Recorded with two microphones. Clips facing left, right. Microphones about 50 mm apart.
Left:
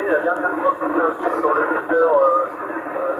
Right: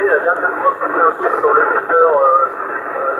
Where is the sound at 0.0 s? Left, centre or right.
Right.